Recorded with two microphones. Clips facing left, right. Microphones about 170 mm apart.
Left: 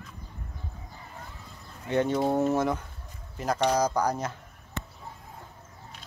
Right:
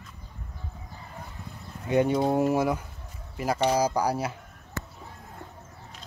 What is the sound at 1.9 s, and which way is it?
Speech, 10° right (ahead or behind).